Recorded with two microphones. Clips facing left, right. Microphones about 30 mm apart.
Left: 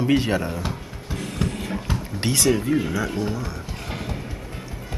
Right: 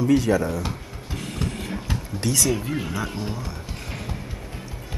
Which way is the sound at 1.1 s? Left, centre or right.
Centre.